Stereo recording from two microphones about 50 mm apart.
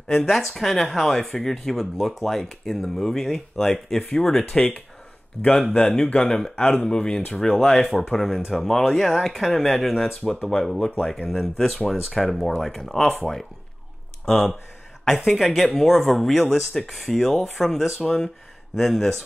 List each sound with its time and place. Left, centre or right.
0.2 s speech: centre
4.5 s speech: left